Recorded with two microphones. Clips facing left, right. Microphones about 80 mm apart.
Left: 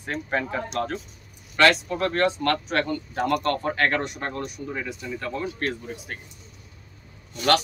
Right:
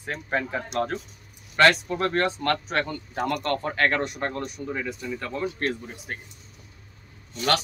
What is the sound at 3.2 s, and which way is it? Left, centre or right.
Speech, left.